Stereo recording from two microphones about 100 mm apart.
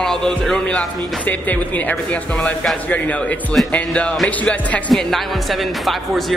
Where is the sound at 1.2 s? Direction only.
15° left (ahead or behind).